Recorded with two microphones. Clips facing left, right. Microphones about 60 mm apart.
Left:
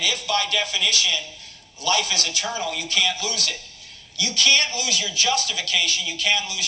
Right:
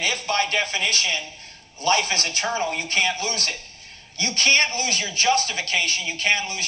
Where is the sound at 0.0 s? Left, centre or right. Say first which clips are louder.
Right 1 dB; right.